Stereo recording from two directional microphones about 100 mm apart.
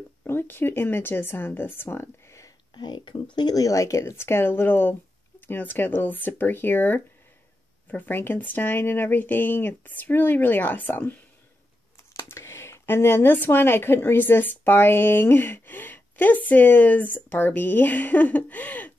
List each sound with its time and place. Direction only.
0.2 s speech: 20° left (ahead or behind)
2.7 s speech: 50° left (ahead or behind); by 18.9 s 15° left (ahead or behind)